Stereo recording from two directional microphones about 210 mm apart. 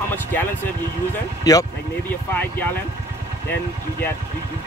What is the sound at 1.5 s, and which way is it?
Speech, 15° left (ahead or behind).